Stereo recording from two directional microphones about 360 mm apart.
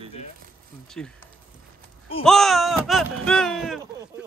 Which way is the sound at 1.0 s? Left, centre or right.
Centre.